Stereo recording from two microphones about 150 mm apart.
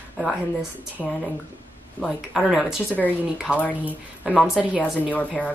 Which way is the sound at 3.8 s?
5° right (ahead or behind).